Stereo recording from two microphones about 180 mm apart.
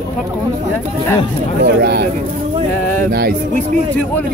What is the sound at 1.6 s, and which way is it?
Speech, 65° right (ahead or behind).